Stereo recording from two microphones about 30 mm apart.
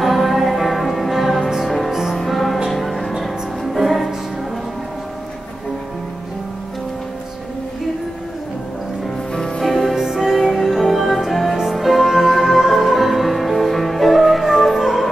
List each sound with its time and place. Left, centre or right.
0.0 s music: centre
2.1 s music: centre
9.6 s music: centre
9.9 s music: centre
10.3 s music: centre